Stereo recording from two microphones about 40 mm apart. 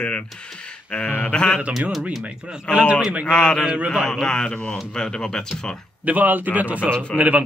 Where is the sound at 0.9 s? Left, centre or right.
Left.